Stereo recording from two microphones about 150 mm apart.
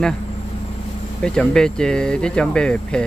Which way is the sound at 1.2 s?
5° left (ahead or behind).